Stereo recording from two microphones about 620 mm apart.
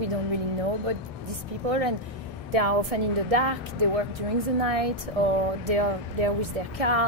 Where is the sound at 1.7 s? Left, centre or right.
Right.